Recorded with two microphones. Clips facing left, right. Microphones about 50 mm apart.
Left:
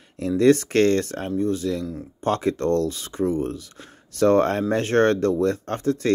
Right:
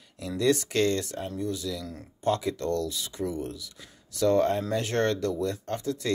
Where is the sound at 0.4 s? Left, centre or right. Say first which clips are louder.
Left 7 dB; left.